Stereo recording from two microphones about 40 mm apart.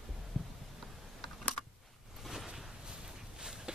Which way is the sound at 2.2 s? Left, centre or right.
Centre.